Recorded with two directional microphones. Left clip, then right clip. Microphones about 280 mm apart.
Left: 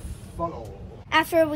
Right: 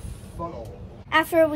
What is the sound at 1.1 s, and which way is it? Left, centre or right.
Speech, centre.